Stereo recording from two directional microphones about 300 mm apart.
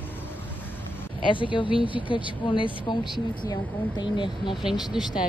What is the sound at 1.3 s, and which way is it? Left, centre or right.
Speech, centre.